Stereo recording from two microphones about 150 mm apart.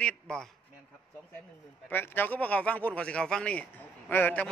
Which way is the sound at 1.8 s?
15° left (ahead or behind).